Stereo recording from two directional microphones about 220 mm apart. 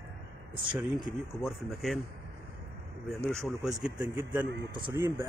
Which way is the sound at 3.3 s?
Centre (ahead or behind).